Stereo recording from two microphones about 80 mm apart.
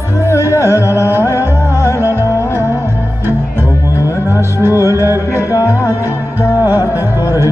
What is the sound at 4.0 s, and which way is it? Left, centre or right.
Music, right.